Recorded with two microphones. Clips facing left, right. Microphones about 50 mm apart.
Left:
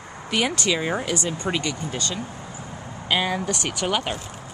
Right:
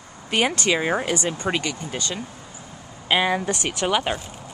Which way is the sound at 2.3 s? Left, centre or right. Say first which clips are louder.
Left 4 dB; left.